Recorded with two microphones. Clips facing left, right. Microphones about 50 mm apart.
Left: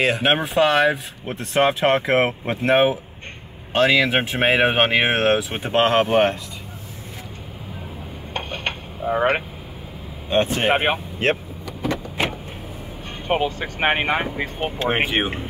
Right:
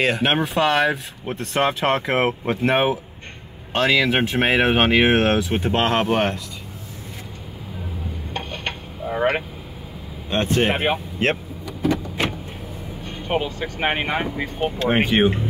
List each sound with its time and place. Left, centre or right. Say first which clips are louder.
0.0 s speech: left 1 dB; centre
8.3 s a sound: left 2 dB; left
9.0 s vehicle: left 2 dB; left
10.3 s speech: even; centre
10.7 s speech: left 2 dB; left
11.2 s speech: left 1 dB; centre
12.2 s vehicle: left 3 dB; centre
13.3 s speech: left 2 dB; left
14.9 s speech: right 4 dB; centre